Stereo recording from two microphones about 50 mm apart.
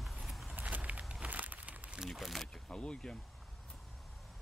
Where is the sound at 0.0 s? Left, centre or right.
Centre.